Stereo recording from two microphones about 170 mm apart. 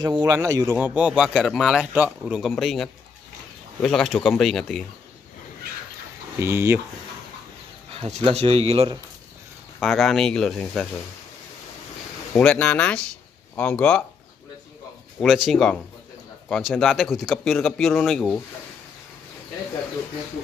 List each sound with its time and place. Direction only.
0.0 s speech: 20° right (ahead or behind)
0.7 s speech: 5° right (ahead or behind)
6.4 s speech: 15° right (ahead or behind)
7.9 s bird: 35° right (ahead or behind)
8.2 s speech: 35° right (ahead or behind)
9.8 s speech: centre (ahead or behind)
12.4 s speech: 5° left (ahead or behind)
15.1 s speech: centre (ahead or behind)